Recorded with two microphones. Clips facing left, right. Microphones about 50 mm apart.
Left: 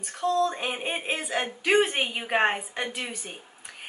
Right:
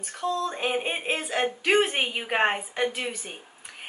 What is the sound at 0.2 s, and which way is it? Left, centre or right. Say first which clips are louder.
A woman's voice: left 2 dB; centre.